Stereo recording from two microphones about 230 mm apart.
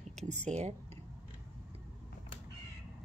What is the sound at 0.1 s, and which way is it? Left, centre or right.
Speech, right.